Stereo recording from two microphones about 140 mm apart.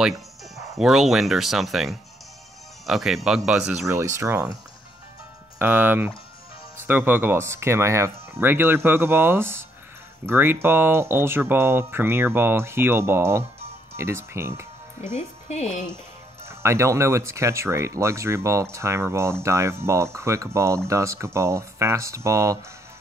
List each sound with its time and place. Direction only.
0.7 s speech: centre (ahead or behind)
3.9 s speech: 20° right (ahead or behind)
5.6 s speech: 15° right (ahead or behind)
15.4 s speech: 50° left (ahead or behind)
16.4 s speech: 20° right (ahead or behind)